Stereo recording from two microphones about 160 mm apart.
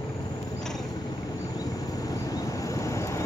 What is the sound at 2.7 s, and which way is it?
Vehicle, 20° left (ahead or behind).